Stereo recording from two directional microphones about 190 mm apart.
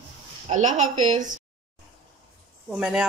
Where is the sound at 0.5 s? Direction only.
40° right (ahead or behind).